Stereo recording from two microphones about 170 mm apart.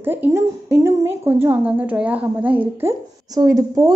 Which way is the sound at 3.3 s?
20° right (ahead or behind).